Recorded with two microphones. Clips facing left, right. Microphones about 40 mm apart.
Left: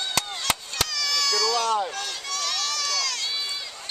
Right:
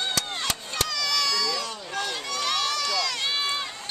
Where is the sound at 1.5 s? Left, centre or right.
Left.